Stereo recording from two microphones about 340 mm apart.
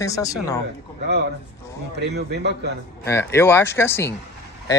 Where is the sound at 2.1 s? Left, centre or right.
Right.